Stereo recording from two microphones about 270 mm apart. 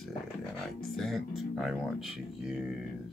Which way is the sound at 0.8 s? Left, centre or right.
Centre.